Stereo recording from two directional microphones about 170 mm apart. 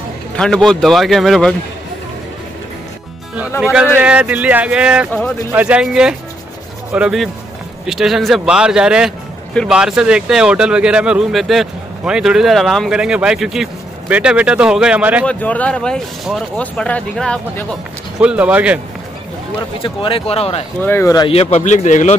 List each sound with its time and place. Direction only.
0.4 s speech: 5° left (ahead or behind)
3.6 s speech: 5° right (ahead or behind)
15.2 s speech: 10° left (ahead or behind)
18.2 s speech: 5° right (ahead or behind)
19.8 s speech: 30° left (ahead or behind)
20.8 s speech: 15° left (ahead or behind)
21.3 s a man's voice: 35° left (ahead or behind)